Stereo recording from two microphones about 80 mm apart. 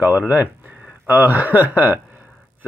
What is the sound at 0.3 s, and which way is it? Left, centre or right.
Speech, right.